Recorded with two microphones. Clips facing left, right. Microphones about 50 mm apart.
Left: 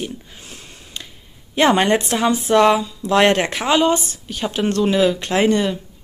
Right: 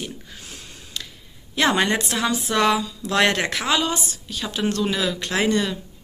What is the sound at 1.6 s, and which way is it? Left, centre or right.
Speech, left.